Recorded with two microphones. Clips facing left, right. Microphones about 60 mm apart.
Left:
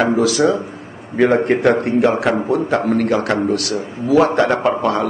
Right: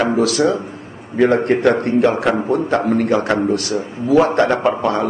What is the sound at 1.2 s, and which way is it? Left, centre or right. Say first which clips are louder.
Speech: even; centre.